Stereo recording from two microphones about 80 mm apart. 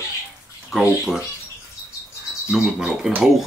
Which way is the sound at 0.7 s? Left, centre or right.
Centre.